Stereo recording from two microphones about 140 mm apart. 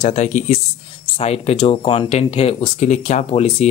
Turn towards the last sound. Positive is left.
turn(degrees=45)  # may be behind; listen again after turning